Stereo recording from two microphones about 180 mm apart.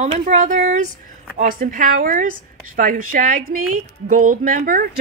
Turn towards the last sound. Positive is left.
turn(degrees=-50)  # may be behind; listen again after turning